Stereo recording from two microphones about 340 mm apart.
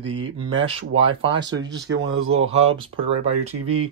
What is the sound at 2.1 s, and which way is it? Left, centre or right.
Speech, right.